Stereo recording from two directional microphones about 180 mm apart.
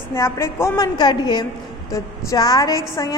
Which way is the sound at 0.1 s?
15° left (ahead or behind).